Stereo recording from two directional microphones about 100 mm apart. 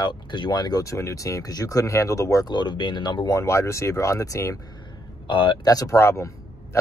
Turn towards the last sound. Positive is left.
turn(degrees=25)  # may be behind; listen again after turning